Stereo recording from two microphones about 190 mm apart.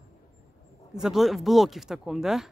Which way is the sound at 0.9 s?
Centre (ahead or behind).